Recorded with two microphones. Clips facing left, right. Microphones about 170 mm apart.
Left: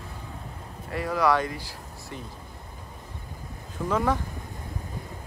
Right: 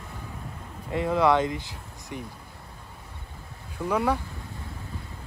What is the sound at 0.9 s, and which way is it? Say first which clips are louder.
Speech: right 2 dB; 25° right (ahead or behind).